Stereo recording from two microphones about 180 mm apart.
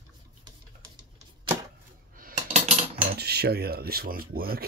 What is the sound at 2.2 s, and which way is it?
Cutlery, 50° right (ahead or behind).